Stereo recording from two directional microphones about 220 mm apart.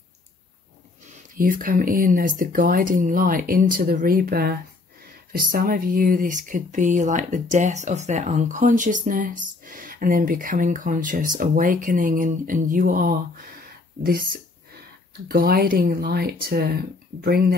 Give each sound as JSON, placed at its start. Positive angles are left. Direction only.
{"t": 1.3, "sound": "speech", "side_deg": -40}